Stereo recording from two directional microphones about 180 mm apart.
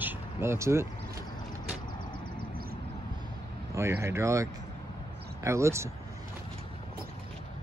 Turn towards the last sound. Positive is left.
turn(degrees=-15)  # may be behind; listen again after turning